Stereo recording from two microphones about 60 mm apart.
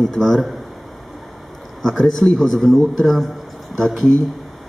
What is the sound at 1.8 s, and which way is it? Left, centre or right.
A man's voice, centre.